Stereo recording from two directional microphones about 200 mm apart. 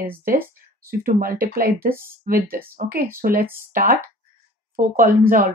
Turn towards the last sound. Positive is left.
turn(degrees=-40)  # may be behind; listen again after turning